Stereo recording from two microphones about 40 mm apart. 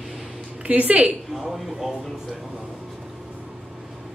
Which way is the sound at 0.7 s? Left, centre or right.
Right.